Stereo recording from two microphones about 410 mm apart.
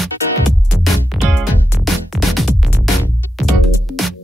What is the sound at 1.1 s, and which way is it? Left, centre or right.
Music, centre.